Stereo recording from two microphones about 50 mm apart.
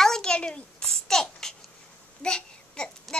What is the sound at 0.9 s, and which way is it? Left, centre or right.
Babbling, centre.